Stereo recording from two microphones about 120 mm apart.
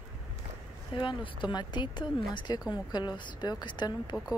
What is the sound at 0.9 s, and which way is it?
Speech, 45° left (ahead or behind).